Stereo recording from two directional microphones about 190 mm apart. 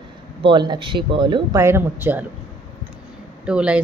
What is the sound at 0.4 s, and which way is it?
Speech, 25° right (ahead or behind).